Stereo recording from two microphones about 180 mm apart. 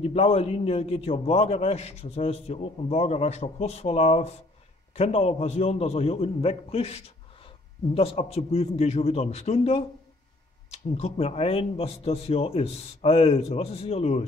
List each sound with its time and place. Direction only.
0.0 s a man's voice: 35° left (ahead or behind)